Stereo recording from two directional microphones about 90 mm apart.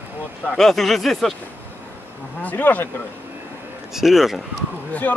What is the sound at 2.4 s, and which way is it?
Speech, 20° left (ahead or behind).